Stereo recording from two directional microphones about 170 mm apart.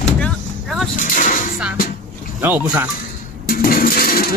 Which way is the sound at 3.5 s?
60° left (ahead or behind).